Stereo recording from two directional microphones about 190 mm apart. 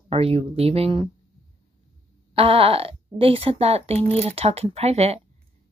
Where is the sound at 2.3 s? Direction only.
30° right (ahead or behind).